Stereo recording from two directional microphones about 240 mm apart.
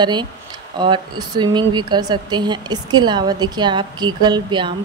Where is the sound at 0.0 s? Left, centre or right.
Centre.